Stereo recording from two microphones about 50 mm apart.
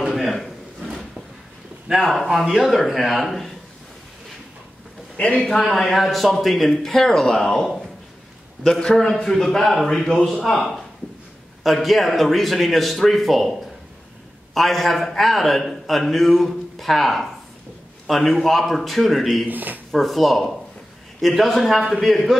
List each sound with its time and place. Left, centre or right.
0.0 s drawer open or close: centre
2.0 s a man's voice: centre
5.1 s a man's voice: left
5.7 s a man's voice: centre
19.4 s speech: right
19.9 s a man's voice: centre